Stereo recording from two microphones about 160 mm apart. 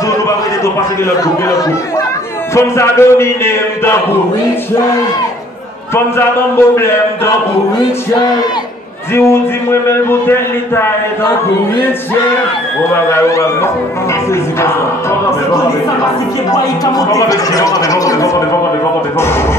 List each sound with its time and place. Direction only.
1.1 s a man's voice: 20° left (ahead or behind)
6.1 s a man's voice: 15° left (ahead or behind)
9.1 s a man's voice: 15° left (ahead or behind)
12.9 s a man's voice: 20° left (ahead or behind)
16.5 s speech: 25° left (ahead or behind)